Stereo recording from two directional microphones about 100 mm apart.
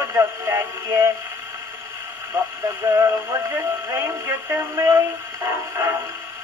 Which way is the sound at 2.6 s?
30° right (ahead or behind).